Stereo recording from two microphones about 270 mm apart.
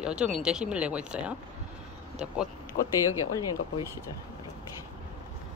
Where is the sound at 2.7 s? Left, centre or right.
Left.